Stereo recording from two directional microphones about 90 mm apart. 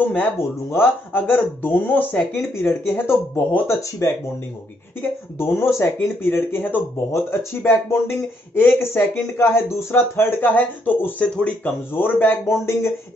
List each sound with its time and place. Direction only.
0.1 s speech: 25° left (ahead or behind)
5.4 s speech: 30° left (ahead or behind)